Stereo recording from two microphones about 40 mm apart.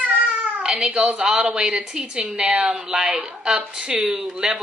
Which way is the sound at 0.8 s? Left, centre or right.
Right.